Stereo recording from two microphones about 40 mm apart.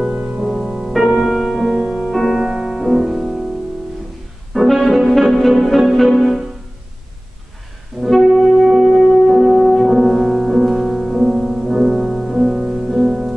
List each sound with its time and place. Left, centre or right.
0.4 s music: centre
1.7 s music: right
2.0 s music: centre
4.8 s music: centre
8.0 s music: centre
9.6 s music: centre
9.8 s music: centre